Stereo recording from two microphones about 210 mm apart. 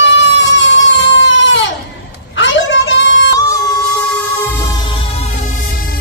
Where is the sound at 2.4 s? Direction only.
60° left (ahead or behind).